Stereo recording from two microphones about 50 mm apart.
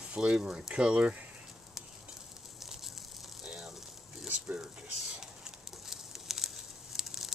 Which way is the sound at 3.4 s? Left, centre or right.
Centre.